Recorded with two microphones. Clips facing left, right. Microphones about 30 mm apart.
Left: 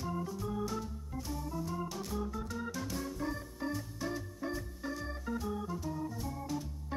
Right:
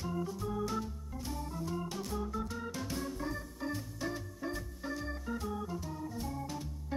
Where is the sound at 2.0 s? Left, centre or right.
Centre.